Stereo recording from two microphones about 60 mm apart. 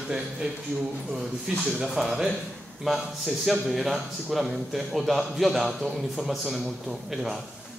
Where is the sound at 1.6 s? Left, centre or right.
Centre.